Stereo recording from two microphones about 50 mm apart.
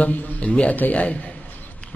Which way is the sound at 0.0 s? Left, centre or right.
Left.